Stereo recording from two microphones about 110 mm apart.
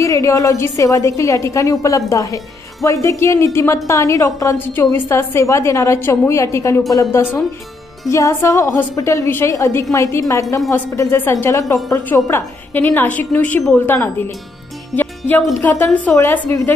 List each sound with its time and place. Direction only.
0.0 s a woman's voice: 30° left (ahead or behind)
15.0 s music: 15° left (ahead or behind)
15.6 s a woman's voice: 15° left (ahead or behind)
16.2 s a woman's voice: 25° left (ahead or behind)